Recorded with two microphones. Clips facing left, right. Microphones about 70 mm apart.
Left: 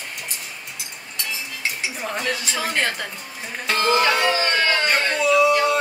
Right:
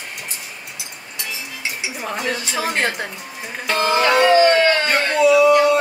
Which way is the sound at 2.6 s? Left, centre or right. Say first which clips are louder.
Right 4 dB; centre.